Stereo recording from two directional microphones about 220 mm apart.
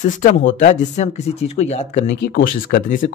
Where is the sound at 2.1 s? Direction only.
45° left (ahead or behind).